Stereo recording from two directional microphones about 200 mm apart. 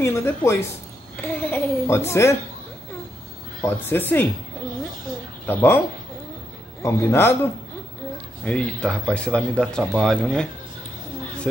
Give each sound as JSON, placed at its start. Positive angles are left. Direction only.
{"t": 0.0, "sound": "a child's voice", "side_deg": 10}
{"t": 3.6, "sound": "a child's voice", "side_deg": 10}
{"t": 5.5, "sound": "a child's voice", "side_deg": 10}
{"t": 6.8, "sound": "a child's voice", "side_deg": 10}
{"t": 8.5, "sound": "speech", "side_deg": 5}